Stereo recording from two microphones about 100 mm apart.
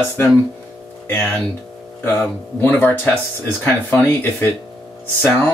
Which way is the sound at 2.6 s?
20° left (ahead or behind).